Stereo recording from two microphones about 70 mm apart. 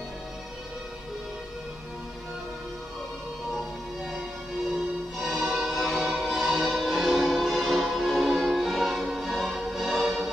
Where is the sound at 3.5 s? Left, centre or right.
Centre.